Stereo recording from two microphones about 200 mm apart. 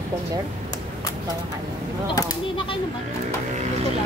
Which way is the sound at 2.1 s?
20° left (ahead or behind).